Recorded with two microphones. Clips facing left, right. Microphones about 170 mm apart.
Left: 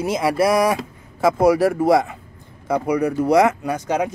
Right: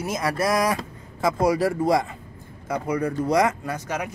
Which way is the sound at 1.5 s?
90° left.